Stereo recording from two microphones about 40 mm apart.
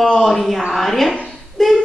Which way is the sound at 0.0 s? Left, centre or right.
Centre.